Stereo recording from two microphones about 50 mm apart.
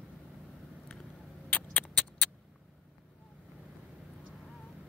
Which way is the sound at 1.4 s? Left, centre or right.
Left.